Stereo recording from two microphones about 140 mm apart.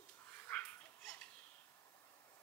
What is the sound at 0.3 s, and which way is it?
Dog, 10° left (ahead or behind).